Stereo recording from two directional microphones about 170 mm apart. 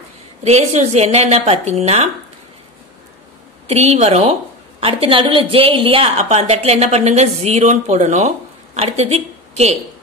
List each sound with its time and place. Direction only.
0.4 s a woman's voice: 40° right (ahead or behind)
3.6 s a woman's voice: 40° right (ahead or behind)